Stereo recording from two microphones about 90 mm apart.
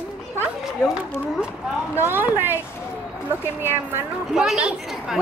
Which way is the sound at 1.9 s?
25° right (ahead or behind).